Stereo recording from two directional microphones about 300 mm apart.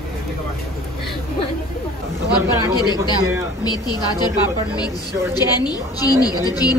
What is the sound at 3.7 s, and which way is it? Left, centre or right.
Speech, centre.